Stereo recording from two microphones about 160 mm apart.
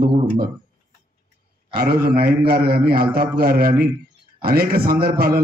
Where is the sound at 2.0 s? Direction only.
70° right (ahead or behind).